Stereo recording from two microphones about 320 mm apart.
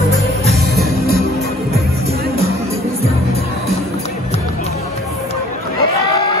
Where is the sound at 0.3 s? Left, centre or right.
Centre.